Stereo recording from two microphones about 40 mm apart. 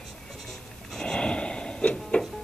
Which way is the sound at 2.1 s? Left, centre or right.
Left.